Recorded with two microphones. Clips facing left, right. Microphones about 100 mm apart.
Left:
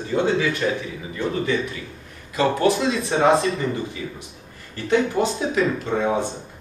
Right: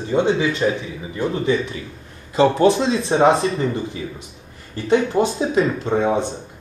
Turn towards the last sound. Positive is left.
turn(degrees=-25)  # may be behind; listen again after turning